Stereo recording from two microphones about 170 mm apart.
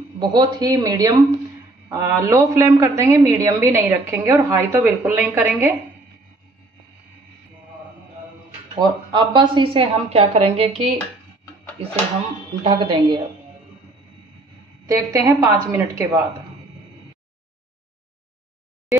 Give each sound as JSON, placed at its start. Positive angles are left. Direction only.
{"t": 0.2, "sound": "a woman's voice", "side_deg": -25}
{"t": 8.7, "sound": "a woman's voice", "side_deg": -25}
{"t": 12.6, "sound": "a woman's voice", "side_deg": -30}
{"t": 14.9, "sound": "a woman's voice", "side_deg": -20}